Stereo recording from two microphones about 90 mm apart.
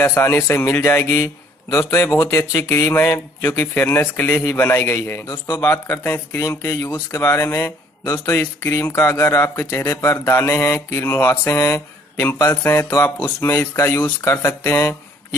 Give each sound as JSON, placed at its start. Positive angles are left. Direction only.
{"t": 0.0, "sound": "a man's voice", "side_deg": 30}
{"t": 5.2, "sound": "speech", "side_deg": 40}
{"t": 5.6, "sound": "a man's voice", "side_deg": 25}